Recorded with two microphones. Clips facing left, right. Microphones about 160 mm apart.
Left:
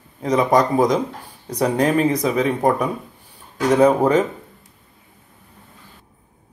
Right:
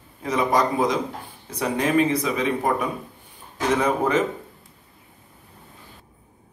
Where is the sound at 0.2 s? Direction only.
40° left (ahead or behind).